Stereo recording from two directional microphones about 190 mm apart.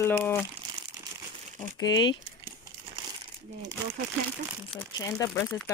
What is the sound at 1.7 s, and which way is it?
Speech, 20° left (ahead or behind).